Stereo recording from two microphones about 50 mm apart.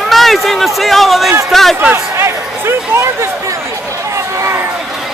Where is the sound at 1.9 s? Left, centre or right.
Right.